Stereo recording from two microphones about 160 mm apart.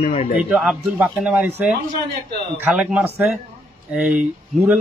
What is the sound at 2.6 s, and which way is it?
Speech, 5° right (ahead or behind).